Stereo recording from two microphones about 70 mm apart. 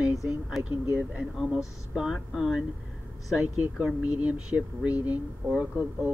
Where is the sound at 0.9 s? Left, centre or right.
Centre.